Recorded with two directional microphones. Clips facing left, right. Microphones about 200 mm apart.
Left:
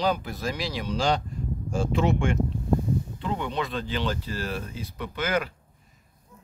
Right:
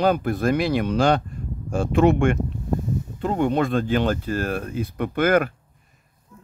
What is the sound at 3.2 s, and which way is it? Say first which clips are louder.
Speech: right 8 dB; 45° right (ahead or behind).